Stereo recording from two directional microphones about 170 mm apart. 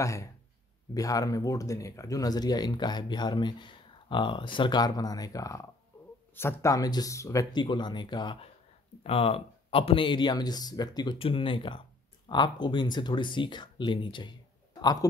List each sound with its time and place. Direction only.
0.0 s speech: 20° left (ahead or behind)
5.9 s a sound: 15° left (ahead or behind)
6.3 s speech: 15° left (ahead or behind)